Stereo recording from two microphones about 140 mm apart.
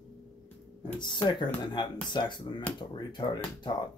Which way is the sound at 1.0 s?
35° left (ahead or behind).